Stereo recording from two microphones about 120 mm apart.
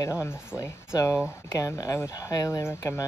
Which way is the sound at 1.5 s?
30° left (ahead or behind).